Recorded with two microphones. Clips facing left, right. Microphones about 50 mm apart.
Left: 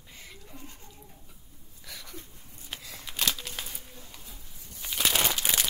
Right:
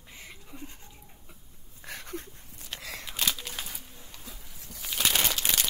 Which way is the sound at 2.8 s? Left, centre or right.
Right.